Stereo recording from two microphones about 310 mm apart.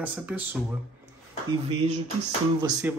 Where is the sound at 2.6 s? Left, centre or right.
Centre.